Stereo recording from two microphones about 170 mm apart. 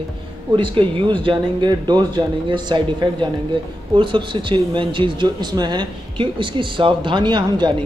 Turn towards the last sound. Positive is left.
turn(degrees=-25)  # may be behind; listen again after turning